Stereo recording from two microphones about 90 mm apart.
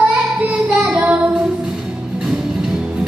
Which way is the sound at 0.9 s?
15° right (ahead or behind).